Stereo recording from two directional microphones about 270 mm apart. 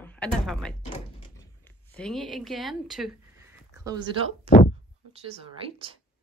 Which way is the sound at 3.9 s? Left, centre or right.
Centre.